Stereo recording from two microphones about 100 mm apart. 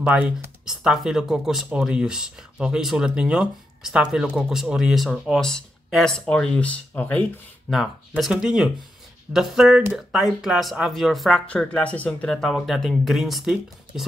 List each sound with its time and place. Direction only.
0.0 s speech: 20° right (ahead or behind)
0.7 s speech: 5° right (ahead or behind); by 7.8 s 10° left (ahead or behind)
8.2 s speech: 5° right (ahead or behind)
11.4 s speech: 10° left (ahead or behind)